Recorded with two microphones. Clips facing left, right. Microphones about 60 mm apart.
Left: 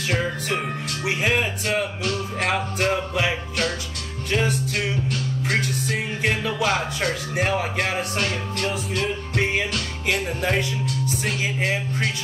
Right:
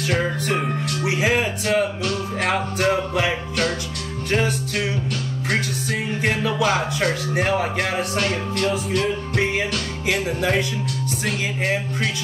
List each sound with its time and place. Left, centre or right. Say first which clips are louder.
1.0 s speech: right 2 dB; right
4.3 s music: right 1 dB; right
5.9 s speech: right 1 dB; right
11.2 s music: right 2 dB; right